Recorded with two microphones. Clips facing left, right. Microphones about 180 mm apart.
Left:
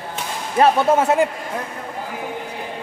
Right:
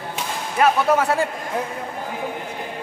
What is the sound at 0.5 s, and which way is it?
Speech, 30° left (ahead or behind).